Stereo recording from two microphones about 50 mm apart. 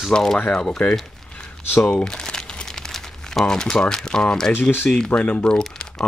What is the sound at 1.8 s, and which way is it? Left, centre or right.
Crumpling, centre.